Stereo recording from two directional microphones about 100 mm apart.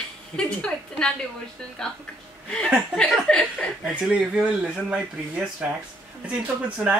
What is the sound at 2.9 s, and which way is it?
Speech, 10° left (ahead or behind).